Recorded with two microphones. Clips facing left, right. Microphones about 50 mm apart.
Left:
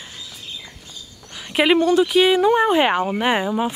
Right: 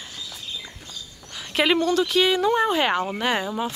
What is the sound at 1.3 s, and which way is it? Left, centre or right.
Speech, centre.